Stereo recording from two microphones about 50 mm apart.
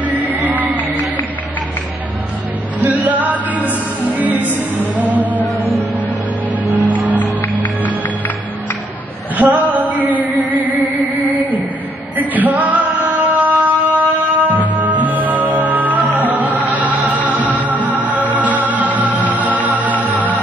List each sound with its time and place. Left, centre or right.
0.0 s music: right
2.8 s music: right
9.4 s music: right
12.2 s music: right